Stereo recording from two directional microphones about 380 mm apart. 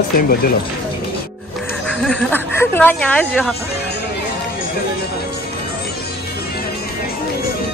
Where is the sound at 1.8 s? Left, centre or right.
Centre.